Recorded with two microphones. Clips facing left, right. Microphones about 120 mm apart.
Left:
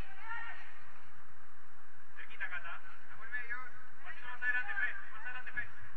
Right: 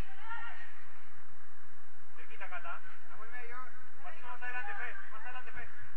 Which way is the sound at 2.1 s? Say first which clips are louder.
Even; 40° right (ahead or behind).